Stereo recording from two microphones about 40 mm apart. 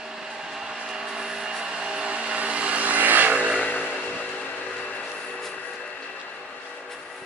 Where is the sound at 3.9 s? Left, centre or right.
Left.